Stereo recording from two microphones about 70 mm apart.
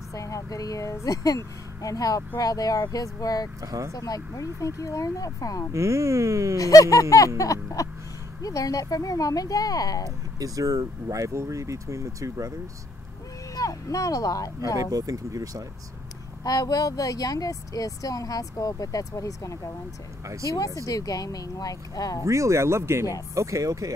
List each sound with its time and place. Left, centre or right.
0.1 s speech: left
3.6 s speech: right
3.9 s speech: left
5.7 s speech: right
6.6 s a sound: left
8.4 s speech: left
10.0 s speech: right
13.6 s speech: left
14.8 s speech: right
16.4 s speech: left
22.2 s speech: right